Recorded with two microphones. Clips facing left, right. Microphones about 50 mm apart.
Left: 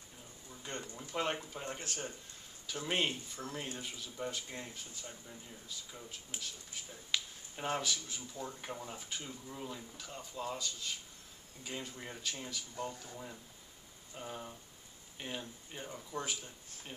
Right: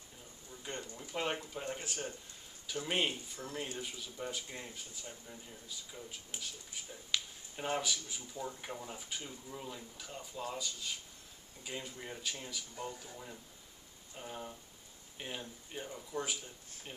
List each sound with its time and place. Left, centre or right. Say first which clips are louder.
0.7 s speech: even; centre
3.4 s speech: left 2 dB; left
3.7 s speech: right 1 dB; centre
6.3 s speech: left 1 dB; centre